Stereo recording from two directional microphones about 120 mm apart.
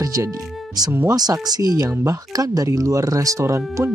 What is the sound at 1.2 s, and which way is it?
Speech, 35° right (ahead or behind).